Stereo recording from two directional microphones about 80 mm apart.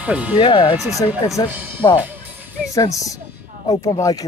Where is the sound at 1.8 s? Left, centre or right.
Left.